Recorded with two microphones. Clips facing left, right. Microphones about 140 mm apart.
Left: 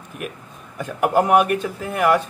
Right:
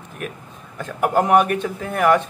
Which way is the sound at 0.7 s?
10° left (ahead or behind).